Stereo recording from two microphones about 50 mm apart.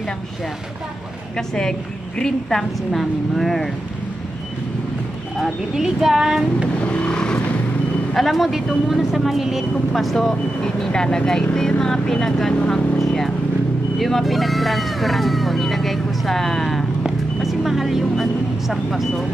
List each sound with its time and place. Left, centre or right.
1.3 s a woman's voice: centre
5.4 s speech: centre
6.9 s vehicle: left
8.1 s speech: centre
9.9 s a woman's voice: centre
13.0 s vehicle: centre
13.9 s speech: centre